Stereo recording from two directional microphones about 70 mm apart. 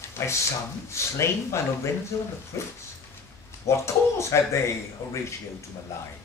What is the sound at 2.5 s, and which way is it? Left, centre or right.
Speech, left.